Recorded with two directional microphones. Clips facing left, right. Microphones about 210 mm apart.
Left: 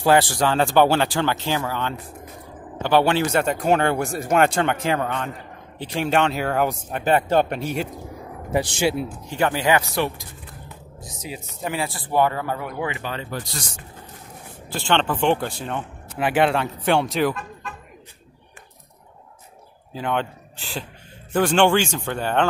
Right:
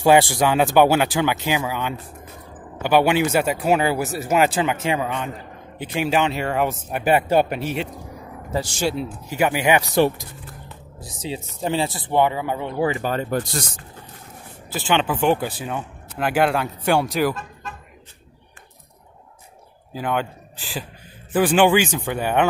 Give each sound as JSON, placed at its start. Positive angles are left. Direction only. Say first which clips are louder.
{"t": 0.0, "sound": "speech", "louder": "right 2 dB", "side_deg": -10}
{"t": 7.0, "sound": "speech", "louder": "right 1 dB", "side_deg": -10}
{"t": 8.5, "sound": "speech", "louder": "left 2 dB", "side_deg": 15}
{"t": 9.2, "sound": "speech", "louder": "right 2 dB", "side_deg": -10}
{"t": 11.1, "sound": "speech", "louder": "right 5 dB", "side_deg": -30}
{"t": 14.7, "sound": "speech", "louder": "right 1 dB", "side_deg": -5}
{"t": 19.9, "sound": "speech", "louder": "right 1 dB", "side_deg": -5}